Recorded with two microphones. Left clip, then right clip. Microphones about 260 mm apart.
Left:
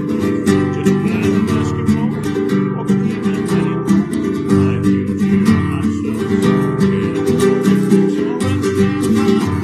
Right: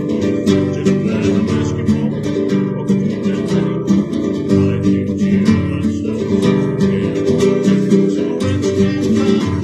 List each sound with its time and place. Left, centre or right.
7.3 s music: centre